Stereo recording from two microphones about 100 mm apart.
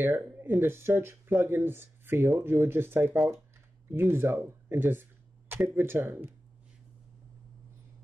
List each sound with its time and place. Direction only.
0.0 s speech: 20° right (ahead or behind)